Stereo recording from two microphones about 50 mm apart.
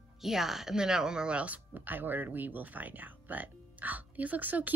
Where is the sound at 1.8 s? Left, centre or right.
Right.